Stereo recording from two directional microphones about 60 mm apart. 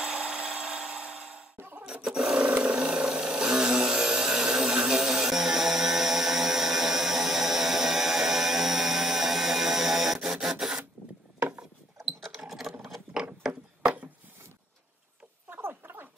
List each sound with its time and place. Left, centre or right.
0.0 s wood: centre
1.6 s filing: right
1.9 s roar: centre
12.0 s a sound: centre
13.1 s gears: centre
15.5 s a sound: right